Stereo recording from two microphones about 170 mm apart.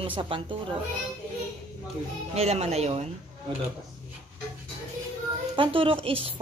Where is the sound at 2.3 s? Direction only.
40° right (ahead or behind).